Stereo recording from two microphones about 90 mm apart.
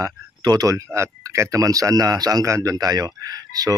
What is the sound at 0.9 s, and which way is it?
A man's voice, 30° right (ahead or behind).